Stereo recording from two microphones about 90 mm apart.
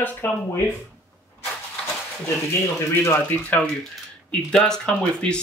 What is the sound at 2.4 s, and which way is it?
Speech, 30° left (ahead or behind).